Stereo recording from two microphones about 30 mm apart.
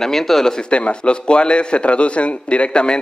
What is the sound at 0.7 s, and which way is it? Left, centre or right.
A man's voice, left.